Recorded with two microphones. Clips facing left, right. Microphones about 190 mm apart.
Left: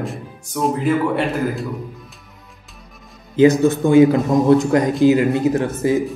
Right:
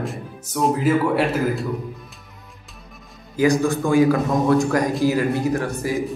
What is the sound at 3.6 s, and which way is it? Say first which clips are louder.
Speech: left 5 dB; 20° left (ahead or behind).